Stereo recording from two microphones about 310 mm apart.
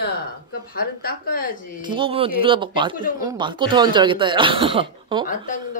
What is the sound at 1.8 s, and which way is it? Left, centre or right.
A woman's voice, centre.